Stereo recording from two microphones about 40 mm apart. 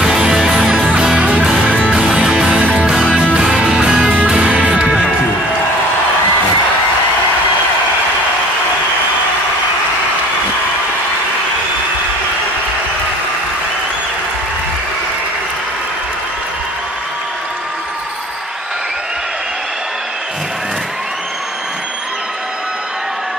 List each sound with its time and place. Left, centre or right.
0.0 s music: right
1.2 s music: right
2.2 s music: right
2.6 s music: right